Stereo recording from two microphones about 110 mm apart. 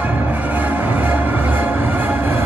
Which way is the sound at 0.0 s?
15° right (ahead or behind).